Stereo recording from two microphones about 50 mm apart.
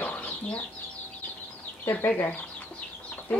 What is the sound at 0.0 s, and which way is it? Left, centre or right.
Chicken, left.